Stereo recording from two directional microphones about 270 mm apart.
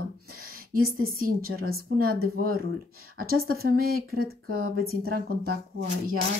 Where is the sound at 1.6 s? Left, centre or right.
Right.